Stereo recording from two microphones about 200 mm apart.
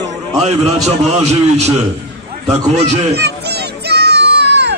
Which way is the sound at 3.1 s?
55° right (ahead or behind).